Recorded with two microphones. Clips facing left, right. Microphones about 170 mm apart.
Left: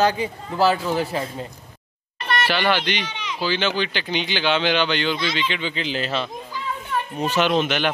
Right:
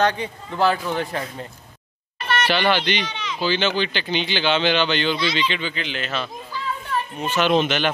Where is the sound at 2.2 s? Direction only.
Centre (ahead or behind).